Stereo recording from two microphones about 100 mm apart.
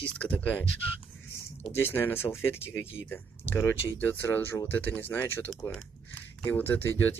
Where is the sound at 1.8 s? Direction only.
20° left (ahead or behind).